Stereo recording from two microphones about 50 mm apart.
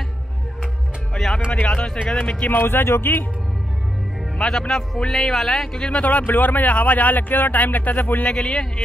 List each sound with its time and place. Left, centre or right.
1.5 s speech: left
2.5 s speech: left
4.4 s a man's voice: centre
5.7 s speech: left
6.0 s speech: left
8.3 s a man's voice: centre